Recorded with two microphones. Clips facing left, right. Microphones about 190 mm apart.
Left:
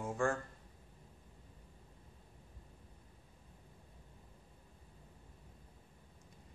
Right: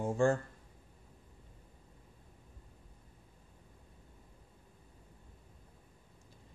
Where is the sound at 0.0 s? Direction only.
25° right (ahead or behind).